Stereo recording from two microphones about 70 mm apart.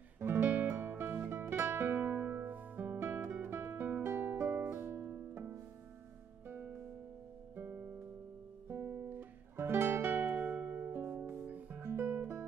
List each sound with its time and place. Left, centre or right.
0.2 s music: right
8.6 s guitar: right
11.2 s music: right
11.8 s music: right